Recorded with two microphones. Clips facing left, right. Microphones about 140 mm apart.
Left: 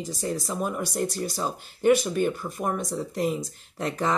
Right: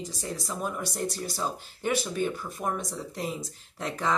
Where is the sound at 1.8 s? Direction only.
55° left (ahead or behind).